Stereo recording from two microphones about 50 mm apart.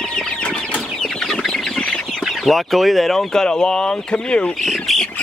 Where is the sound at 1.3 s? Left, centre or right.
Centre.